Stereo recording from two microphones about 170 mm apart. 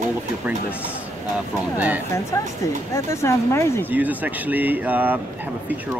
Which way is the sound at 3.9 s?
10° right (ahead or behind).